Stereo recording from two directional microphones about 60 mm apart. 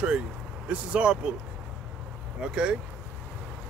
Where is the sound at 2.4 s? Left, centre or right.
Centre.